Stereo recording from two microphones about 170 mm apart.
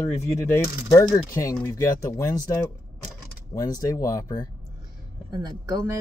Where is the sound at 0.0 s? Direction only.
10° left (ahead or behind).